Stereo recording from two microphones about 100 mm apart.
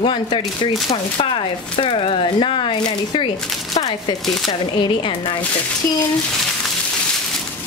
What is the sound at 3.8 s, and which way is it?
Speech, 65° left (ahead or behind).